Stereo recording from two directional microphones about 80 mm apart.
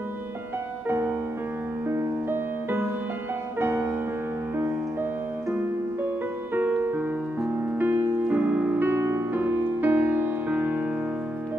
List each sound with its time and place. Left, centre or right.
0.8 s music: right
3.5 s music: right
6.5 s music: right